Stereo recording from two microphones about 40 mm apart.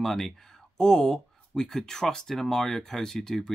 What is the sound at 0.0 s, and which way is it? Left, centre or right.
Speech, centre.